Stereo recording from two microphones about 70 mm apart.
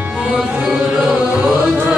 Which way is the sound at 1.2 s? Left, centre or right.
Right.